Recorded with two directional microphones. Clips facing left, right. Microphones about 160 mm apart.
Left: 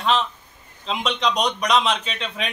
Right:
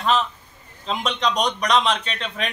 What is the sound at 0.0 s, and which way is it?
A man's voice, centre (ahead or behind).